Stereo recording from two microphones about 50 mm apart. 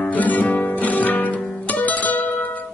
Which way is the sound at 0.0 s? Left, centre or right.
Left.